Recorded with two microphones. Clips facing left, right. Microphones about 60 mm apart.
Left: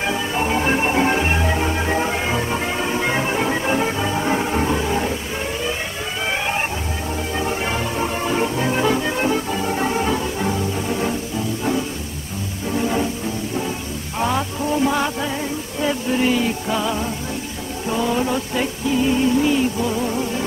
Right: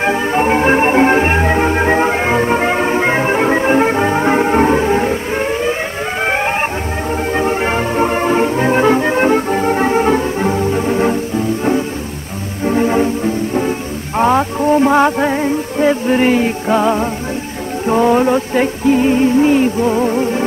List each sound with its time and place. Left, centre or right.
0.0 s music: right